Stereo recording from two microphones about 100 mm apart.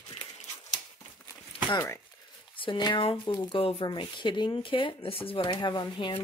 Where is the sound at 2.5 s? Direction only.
55° left (ahead or behind).